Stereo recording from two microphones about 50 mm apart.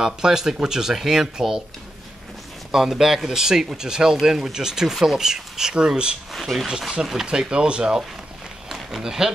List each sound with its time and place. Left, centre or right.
0.0 s speech: centre
2.7 s speech: centre
6.3 s speech: centre
8.6 s a sound: centre